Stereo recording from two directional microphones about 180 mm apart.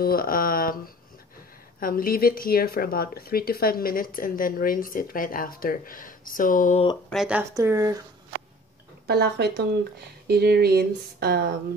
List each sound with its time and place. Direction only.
0.0 s speech: 55° left (ahead or behind)
7.1 s speech: 5° right (ahead or behind)
7.5 s speech: 20° right (ahead or behind)
9.0 s speech: 65° right (ahead or behind)